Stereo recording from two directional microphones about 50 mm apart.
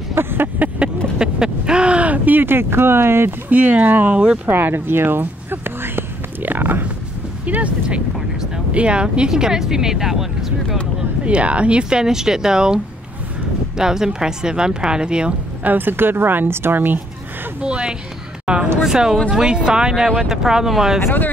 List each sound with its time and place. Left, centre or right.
0.1 s a sound: right
1.1 s speech: centre; by 3.3 s right
3.4 s speech: right; by 10.8 s centre
11.2 s speech: right
15.6 s speech: right
17.6 s speech: right
18.4 s a sound: centre
18.8 s speech: centre